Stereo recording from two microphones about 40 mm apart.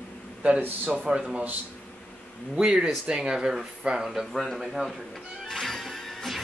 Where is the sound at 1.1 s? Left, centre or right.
Right.